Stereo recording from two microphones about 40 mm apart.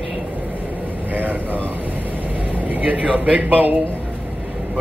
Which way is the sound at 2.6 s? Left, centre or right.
Right.